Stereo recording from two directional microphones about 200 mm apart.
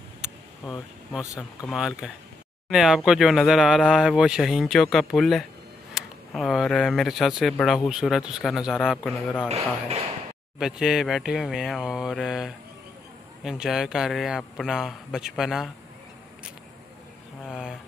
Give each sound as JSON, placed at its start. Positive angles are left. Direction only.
{"t": 1.2, "sound": "speech", "side_deg": 15}
{"t": 1.7, "sound": "speech", "side_deg": 0}
{"t": 9.5, "sound": "speech", "side_deg": -30}
{"t": 10.6, "sound": "speech", "side_deg": 0}
{"t": 17.5, "sound": "a sound", "side_deg": -5}